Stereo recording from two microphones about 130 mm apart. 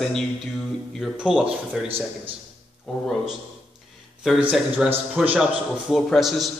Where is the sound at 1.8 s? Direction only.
45° right (ahead or behind).